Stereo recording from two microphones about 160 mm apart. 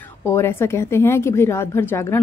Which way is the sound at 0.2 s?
15° left (ahead or behind).